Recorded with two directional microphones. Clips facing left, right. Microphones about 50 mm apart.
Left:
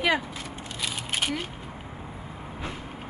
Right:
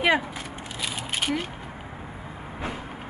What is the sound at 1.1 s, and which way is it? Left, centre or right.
Single-lens reflex camera, centre.